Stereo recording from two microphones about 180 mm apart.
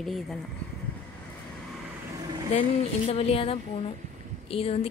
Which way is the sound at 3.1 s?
35° left (ahead or behind).